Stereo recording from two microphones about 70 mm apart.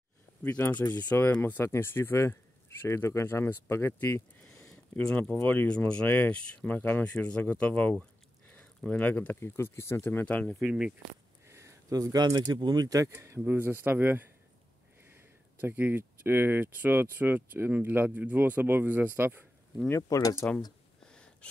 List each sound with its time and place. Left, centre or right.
0.4 s speech: left
8.5 s a sound: centre
9.4 s speech: left
10.2 s speech: centre
10.6 s speech: centre
11.4 s a sound: right
11.9 s speech: right
13.1 s speech: right
20.0 s speech: left
21.1 s a sound: centre